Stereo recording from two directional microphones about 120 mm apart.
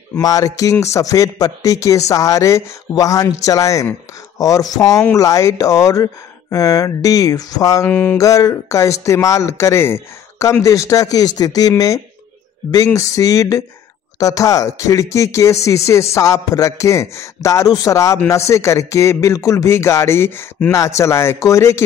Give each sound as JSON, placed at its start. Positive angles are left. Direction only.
{"t": 0.2, "sound": "speech", "side_deg": 30}
{"t": 7.9, "sound": "a sound", "side_deg": 15}
{"t": 8.2, "sound": "speech", "side_deg": 30}